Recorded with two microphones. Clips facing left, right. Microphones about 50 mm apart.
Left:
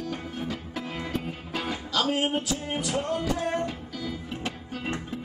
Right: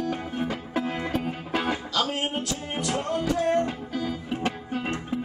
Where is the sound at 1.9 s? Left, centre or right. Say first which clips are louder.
Left 1 dB; centre.